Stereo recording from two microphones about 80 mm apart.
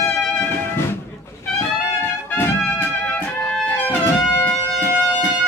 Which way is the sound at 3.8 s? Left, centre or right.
Left.